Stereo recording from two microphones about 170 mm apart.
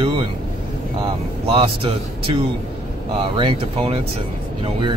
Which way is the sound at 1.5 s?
30° right (ahead or behind).